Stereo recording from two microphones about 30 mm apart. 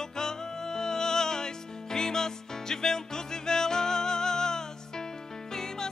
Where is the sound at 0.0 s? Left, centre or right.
Left.